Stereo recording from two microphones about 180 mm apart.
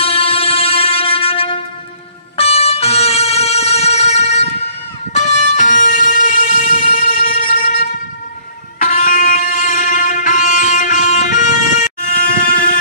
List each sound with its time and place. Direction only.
0.0 s music: 30° left (ahead or behind)